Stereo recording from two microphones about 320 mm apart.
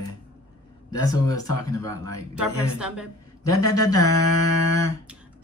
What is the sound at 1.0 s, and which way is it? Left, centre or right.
Speech, centre.